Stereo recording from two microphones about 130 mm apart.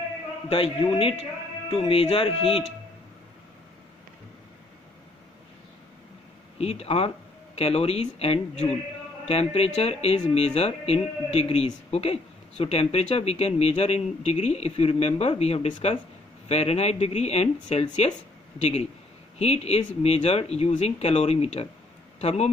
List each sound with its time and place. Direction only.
0.5 s speech: 45° left (ahead or behind)
6.6 s speech: 50° left (ahead or behind)
19.3 s speech: 55° left (ahead or behind)